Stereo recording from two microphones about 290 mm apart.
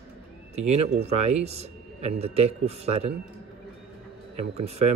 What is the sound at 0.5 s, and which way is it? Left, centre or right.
Speech, right.